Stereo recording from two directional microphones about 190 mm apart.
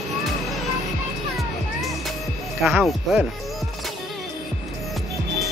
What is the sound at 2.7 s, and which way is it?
Speech, centre (ahead or behind).